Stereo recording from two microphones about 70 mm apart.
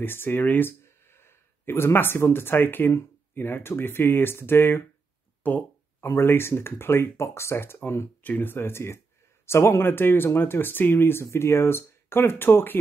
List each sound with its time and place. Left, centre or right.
0.0 s speech: left
5.4 s a sound: left
6.0 s speech: left
8.2 s speech: left